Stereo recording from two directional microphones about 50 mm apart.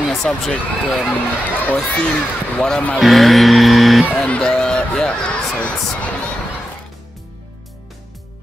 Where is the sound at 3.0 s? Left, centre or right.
Centre.